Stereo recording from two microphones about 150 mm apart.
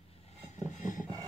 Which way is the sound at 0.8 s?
60° left (ahead or behind).